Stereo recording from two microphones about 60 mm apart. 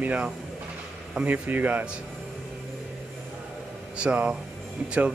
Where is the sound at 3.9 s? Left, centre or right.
Right.